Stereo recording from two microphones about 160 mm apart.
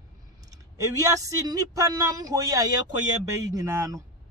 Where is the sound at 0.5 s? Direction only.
20° right (ahead or behind).